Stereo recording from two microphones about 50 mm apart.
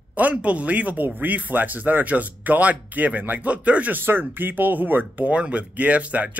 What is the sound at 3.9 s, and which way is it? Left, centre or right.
Speech, right.